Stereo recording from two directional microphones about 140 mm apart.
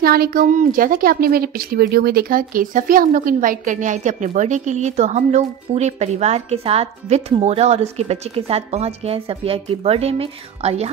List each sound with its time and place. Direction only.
0.0 s a woman's voice: 90° right; by 10.9 s 45° right (ahead or behind)